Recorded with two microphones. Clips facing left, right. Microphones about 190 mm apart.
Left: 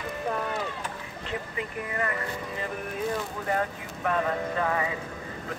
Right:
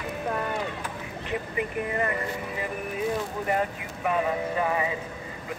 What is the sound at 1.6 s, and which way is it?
Speech, 20° right (ahead or behind).